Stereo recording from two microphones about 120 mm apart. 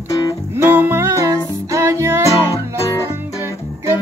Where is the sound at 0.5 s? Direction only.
20° right (ahead or behind).